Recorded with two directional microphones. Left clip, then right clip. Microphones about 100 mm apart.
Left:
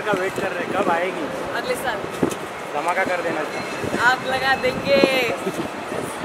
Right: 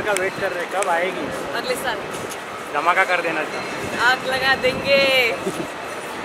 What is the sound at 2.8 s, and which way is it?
Speech, 50° right (ahead or behind).